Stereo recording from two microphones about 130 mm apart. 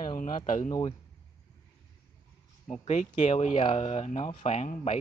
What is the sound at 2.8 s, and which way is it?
Speech, 70° left (ahead or behind).